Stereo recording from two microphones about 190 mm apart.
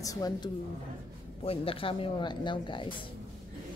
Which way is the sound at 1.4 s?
30° left (ahead or behind).